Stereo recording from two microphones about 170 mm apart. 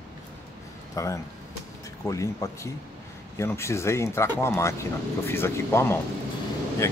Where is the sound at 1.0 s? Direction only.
20° left (ahead or behind).